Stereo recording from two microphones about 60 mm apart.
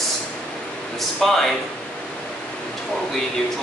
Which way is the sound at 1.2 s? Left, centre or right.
Centre.